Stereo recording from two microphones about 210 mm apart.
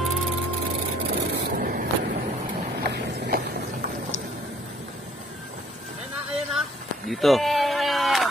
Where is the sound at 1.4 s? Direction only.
45° right (ahead or behind).